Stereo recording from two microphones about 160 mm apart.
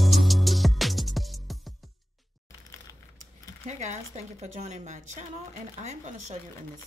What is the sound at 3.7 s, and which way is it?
A woman's voice, 45° right (ahead or behind).